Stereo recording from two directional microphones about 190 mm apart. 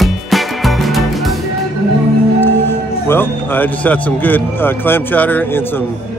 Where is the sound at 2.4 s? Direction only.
10° left (ahead or behind).